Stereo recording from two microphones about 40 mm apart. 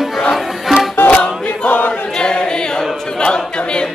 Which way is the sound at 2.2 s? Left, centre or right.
Left.